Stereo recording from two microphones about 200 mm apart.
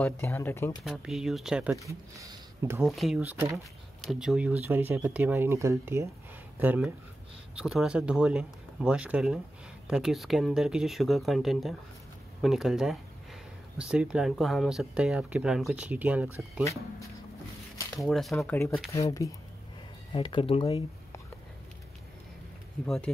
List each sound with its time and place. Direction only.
0.0 s speech: 10° left (ahead or behind)
0.8 s speech: centre (ahead or behind)
2.1 s speech: 15° right (ahead or behind)
2.8 s speech: centre (ahead or behind)
4.0 s speech: centre (ahead or behind)
17.9 s speech: centre (ahead or behind)
18.9 s speech: 15° left (ahead or behind)
22.8 s speech: 5° left (ahead or behind)